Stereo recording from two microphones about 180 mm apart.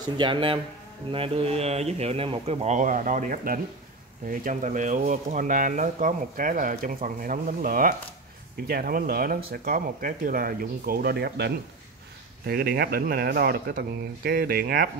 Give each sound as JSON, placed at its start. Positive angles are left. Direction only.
{"t": 0.0, "sound": "speech", "side_deg": -25}